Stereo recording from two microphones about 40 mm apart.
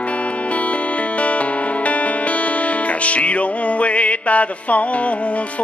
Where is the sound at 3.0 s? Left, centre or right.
Left.